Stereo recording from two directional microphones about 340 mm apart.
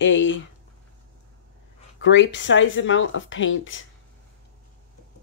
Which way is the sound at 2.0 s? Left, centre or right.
Left.